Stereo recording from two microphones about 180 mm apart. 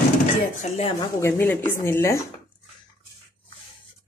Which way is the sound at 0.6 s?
35° left (ahead or behind).